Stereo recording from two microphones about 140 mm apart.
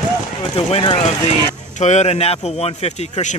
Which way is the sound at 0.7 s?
40° left (ahead or behind).